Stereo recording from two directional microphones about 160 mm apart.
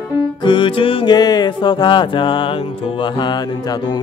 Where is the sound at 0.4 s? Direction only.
30° left (ahead or behind).